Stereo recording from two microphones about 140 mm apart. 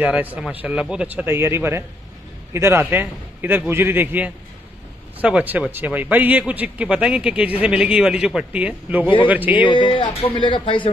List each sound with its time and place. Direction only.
0.0 s a man's voice: 10° right (ahead or behind)
9.7 s speech: 35° left (ahead or behind)